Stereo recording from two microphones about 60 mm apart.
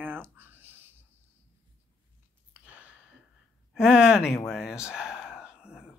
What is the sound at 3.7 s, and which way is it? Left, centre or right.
Speech, centre.